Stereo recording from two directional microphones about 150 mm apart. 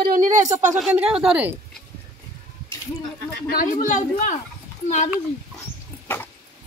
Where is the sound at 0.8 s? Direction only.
5° right (ahead or behind).